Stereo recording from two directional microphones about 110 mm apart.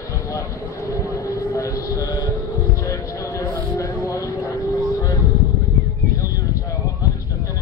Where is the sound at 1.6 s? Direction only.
35° left (ahead or behind).